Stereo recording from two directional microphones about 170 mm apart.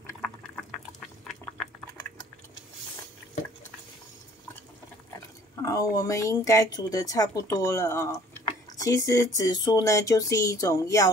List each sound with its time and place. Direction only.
0.2 s boiling: 5° left (ahead or behind)
1.2 s a sound: 5° left (ahead or behind)
5.7 s speech: 20° left (ahead or behind)